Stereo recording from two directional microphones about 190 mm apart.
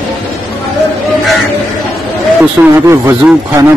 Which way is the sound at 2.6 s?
15° right (ahead or behind).